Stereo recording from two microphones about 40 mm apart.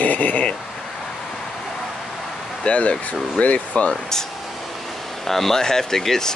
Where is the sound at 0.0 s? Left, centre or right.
Left.